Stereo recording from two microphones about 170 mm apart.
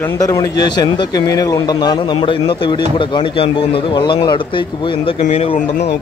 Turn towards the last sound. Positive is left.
turn(degrees=35)  # may be behind; listen again after turning